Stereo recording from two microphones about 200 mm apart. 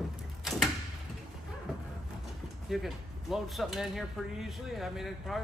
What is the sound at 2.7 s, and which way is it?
Speech, centre (ahead or behind).